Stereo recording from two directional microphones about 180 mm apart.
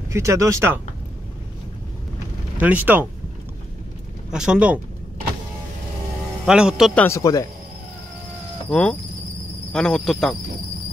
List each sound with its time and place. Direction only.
0.1 s speech: 15° right (ahead or behind)
2.5 s speech: 10° right (ahead or behind)
4.3 s speech: 5° right (ahead or behind)
6.4 s speech: 5° right (ahead or behind)
7.0 s speech: 15° left (ahead or behind)
8.6 s speech: 5° left (ahead or behind)